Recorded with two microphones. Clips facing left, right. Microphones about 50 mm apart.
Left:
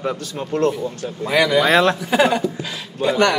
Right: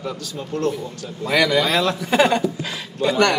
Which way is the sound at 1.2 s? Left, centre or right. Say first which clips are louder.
Left 1 dB; centre.